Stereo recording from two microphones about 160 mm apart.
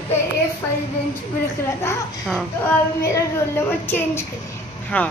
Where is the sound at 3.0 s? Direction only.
15° left (ahead or behind).